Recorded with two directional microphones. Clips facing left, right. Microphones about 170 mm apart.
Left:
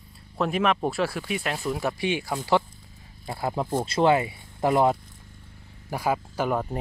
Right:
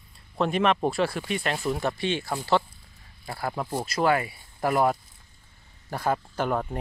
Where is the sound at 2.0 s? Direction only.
10° left (ahead or behind).